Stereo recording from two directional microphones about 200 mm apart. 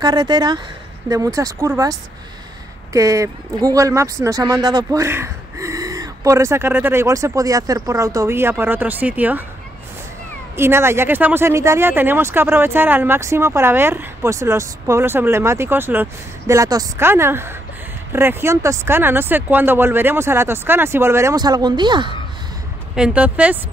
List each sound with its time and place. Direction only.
0.0 s speech: 20° right (ahead or behind)
10.5 s speech: 10° right (ahead or behind)
22.9 s speech: 5° right (ahead or behind)